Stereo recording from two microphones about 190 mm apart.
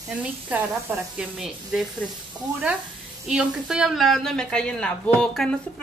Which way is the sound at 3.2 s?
5° right (ahead or behind).